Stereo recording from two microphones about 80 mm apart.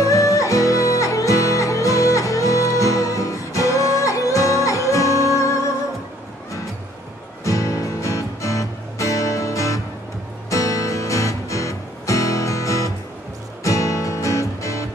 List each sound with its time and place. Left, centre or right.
0.0 s music: left
7.4 s music: left